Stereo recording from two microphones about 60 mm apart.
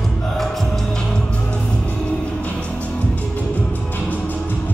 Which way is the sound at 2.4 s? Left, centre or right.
Left.